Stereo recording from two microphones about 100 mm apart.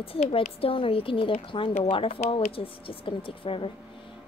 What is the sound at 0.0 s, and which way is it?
Speech, 70° left (ahead or behind).